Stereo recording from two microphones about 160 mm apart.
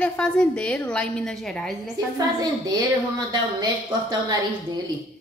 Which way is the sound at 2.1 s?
25° right (ahead or behind).